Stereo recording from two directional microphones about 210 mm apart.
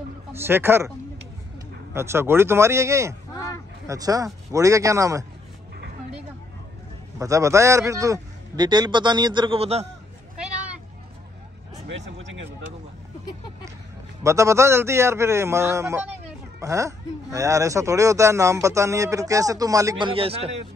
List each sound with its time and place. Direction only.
0.3 s speech: 10° right (ahead or behind)
2.0 s speech: 10° right (ahead or behind)
7.2 s a man's voice: 15° right (ahead or behind)
10.3 s a sound: 5° right (ahead or behind)
14.2 s speech: 15° right (ahead or behind)